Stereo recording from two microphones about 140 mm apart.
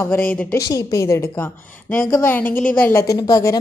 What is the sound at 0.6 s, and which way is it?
A woman's voice, 25° left (ahead or behind).